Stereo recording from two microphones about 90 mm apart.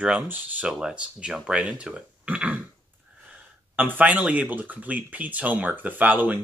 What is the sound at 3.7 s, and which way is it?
Speech, 20° right (ahead or behind).